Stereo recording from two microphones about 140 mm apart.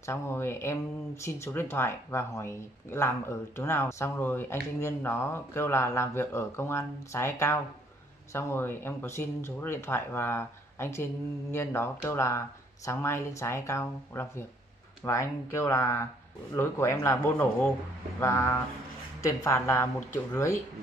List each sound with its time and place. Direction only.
0.0 s speech: 15° left (ahead or behind)